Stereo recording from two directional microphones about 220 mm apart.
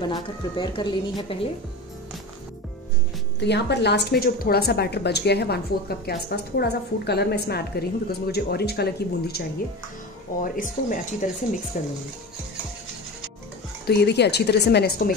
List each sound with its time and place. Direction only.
0.0 s a woman's voice: 20° left (ahead or behind)
3.3 s a woman's voice: 50° left (ahead or behind)
10.4 s speech: 40° left (ahead or behind)
13.8 s a woman's voice: 50° left (ahead or behind)